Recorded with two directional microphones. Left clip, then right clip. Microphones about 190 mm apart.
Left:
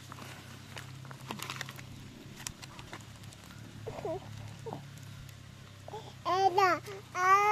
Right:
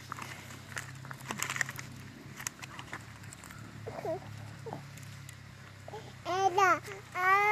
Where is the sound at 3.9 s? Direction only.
10° left (ahead or behind).